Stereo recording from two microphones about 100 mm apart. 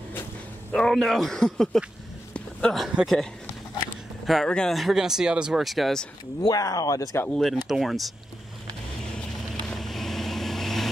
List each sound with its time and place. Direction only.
0.7 s speech: 5° left (ahead or behind)
2.3 s a sound: 5° left (ahead or behind)
4.3 s speech: 5° left (ahead or behind)
6.4 s speech: 40° left (ahead or behind)
7.2 s speech: 5° left (ahead or behind)
9.6 s vehicle: 5° left (ahead or behind)